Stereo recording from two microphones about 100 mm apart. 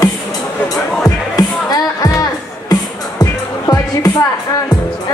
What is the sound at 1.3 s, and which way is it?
Music, 40° left (ahead or behind).